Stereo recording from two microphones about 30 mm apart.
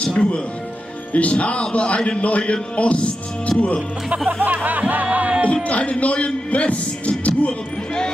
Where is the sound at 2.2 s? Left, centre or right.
Left.